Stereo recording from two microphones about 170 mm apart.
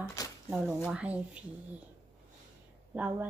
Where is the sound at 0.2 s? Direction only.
20° left (ahead or behind).